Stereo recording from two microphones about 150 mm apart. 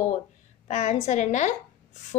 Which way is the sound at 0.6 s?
50° left (ahead or behind).